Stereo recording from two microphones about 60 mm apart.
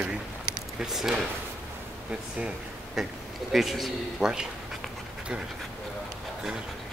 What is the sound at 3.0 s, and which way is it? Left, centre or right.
A man's voice, centre.